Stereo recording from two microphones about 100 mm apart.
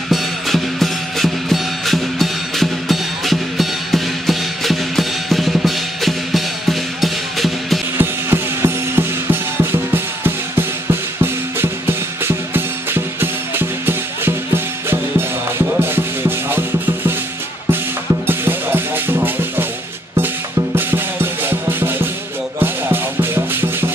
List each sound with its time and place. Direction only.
0.1 s music: centre (ahead or behind)
8.0 s music: 25° right (ahead or behind)
12.3 s music: 20° right (ahead or behind)
18.2 s music: 20° right (ahead or behind)
20.7 s music: 20° right (ahead or behind)